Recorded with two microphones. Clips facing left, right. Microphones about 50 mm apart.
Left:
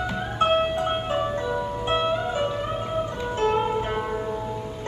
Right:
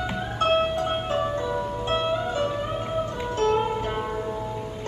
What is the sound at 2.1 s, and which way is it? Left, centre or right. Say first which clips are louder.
Music: even; centre.